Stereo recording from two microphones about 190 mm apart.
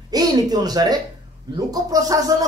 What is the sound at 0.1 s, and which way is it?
Speech, 20° right (ahead or behind).